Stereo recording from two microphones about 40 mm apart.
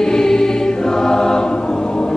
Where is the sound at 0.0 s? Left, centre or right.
Centre.